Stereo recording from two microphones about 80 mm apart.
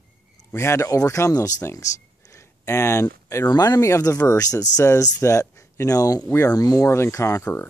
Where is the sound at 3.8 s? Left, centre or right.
Left.